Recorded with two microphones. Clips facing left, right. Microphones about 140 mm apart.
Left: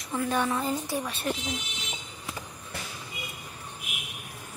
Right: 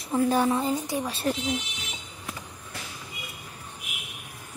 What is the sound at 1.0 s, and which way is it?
Speech, 30° right (ahead or behind).